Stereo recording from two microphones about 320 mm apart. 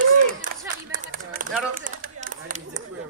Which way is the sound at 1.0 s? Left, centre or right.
Right.